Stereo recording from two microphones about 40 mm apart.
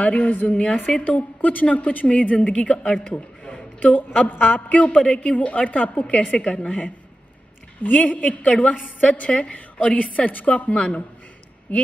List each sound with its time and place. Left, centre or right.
0.0 s a woman's voice: left
4.9 s a woman's voice: left
5.3 s a woman's voice: left
7.8 s a woman's voice: left